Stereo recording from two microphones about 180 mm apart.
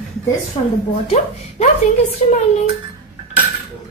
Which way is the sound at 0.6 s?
30° left (ahead or behind).